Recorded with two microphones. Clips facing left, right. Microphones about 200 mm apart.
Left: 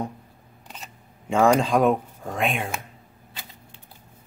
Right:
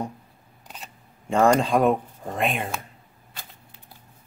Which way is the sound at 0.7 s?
Centre (ahead or behind).